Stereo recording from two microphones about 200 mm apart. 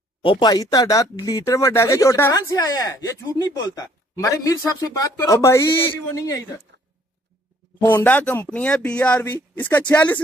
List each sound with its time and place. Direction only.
0.2 s speech: 25° left (ahead or behind)
7.8 s speech: 10° left (ahead or behind)